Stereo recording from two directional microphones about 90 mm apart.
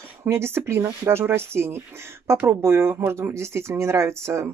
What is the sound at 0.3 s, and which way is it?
Speech, 30° right (ahead or behind).